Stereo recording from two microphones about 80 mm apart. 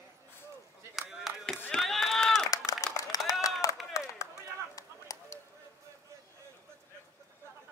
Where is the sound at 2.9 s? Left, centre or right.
Left.